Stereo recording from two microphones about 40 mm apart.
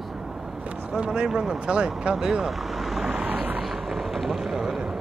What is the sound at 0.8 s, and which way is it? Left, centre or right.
Speech, right.